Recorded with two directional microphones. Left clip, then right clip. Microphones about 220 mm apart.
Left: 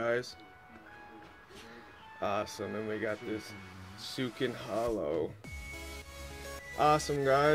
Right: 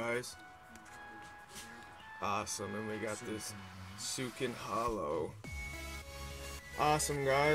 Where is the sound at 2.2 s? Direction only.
Centre (ahead or behind).